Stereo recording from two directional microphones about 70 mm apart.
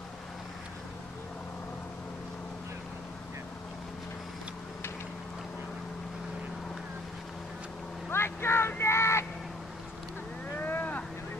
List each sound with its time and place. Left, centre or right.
8.1 s vehicle: left
10.5 s vehicle: left